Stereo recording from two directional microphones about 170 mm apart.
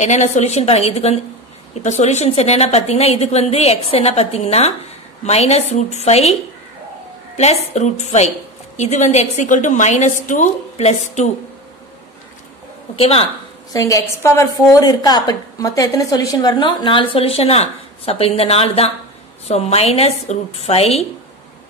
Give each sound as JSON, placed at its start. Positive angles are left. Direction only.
{"t": 0.0, "sound": "a woman's voice", "side_deg": 45}
{"t": 7.3, "sound": "a woman's voice", "side_deg": 40}
{"t": 12.9, "sound": "a woman's voice", "side_deg": 35}
{"t": 13.7, "sound": "a woman's voice", "side_deg": 20}